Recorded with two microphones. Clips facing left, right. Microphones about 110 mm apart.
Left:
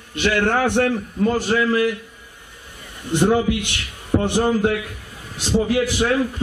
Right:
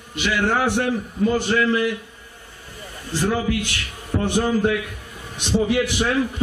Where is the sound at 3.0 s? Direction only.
20° left (ahead or behind).